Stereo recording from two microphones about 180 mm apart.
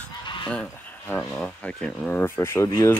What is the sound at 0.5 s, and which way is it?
Speech, 10° left (ahead or behind).